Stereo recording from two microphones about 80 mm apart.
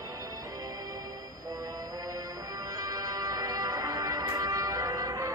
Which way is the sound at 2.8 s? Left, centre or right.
Right.